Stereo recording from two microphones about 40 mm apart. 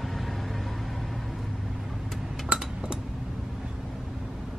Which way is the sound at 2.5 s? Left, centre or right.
Right.